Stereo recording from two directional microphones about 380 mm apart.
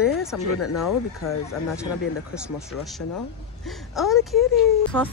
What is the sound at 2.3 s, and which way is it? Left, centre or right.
A woman's voice, centre.